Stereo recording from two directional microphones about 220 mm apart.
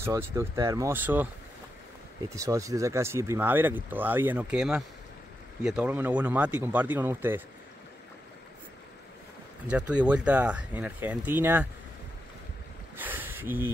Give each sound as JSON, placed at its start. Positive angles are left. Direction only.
{"t": 0.0, "sound": "speech", "side_deg": -10}
{"t": 2.3, "sound": "speech", "side_deg": -15}
{"t": 9.7, "sound": "speech", "side_deg": -5}
{"t": 12.9, "sound": "a sound", "side_deg": -10}